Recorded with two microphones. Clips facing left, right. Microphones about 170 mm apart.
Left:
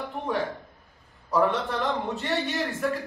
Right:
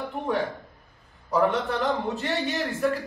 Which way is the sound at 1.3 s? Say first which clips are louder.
Right 1 dB; centre (ahead or behind).